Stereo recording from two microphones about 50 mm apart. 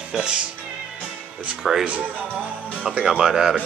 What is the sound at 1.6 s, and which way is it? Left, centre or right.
Speech, centre.